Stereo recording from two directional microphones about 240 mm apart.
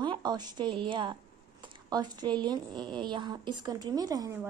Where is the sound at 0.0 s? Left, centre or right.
Centre.